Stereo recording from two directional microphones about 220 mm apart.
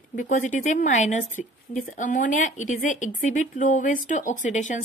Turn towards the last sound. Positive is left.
turn(degrees=35)  # may be behind; listen again after turning